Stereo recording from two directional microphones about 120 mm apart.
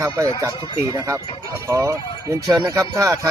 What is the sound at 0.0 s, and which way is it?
Speech, 25° right (ahead or behind).